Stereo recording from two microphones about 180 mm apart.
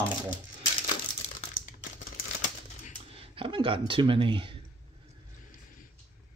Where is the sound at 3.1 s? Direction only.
30° right (ahead or behind).